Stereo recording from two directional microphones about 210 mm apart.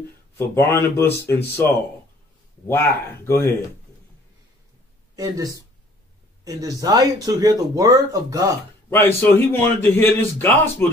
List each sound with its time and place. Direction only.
0.4 s a man's voice: 10° left (ahead or behind)
3.3 s a man's voice: 10° left (ahead or behind)
5.1 s speech: 15° right (ahead or behind)
8.9 s a man's voice: 10° left (ahead or behind)